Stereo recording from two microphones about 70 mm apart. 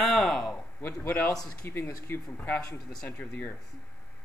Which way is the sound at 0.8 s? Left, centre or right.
Left.